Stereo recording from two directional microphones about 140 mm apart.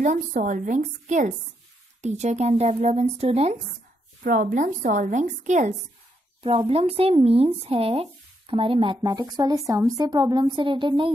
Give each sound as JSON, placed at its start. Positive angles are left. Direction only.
{"t": 0.0, "sound": "a woman's voice", "side_deg": -70}
{"t": 4.2, "sound": "a woman's voice", "side_deg": -90}
{"t": 6.7, "sound": "speech", "side_deg": -45}
{"t": 9.0, "sound": "a woman's voice", "side_deg": -30}